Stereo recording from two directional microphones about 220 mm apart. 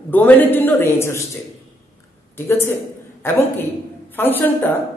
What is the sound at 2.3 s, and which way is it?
Speech, 10° left (ahead or behind).